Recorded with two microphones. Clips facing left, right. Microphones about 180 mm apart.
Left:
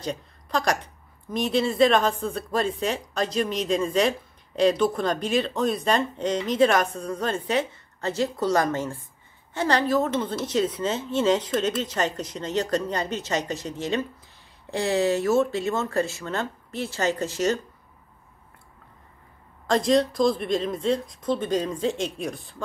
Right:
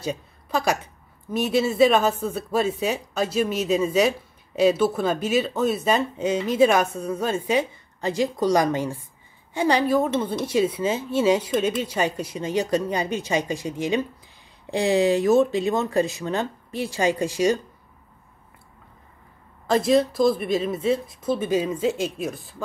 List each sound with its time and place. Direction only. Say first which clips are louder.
0.0 s a woman's voice: right 2 dB; 10° right (ahead or behind)
19.7 s speech: right 2 dB; 5° right (ahead or behind)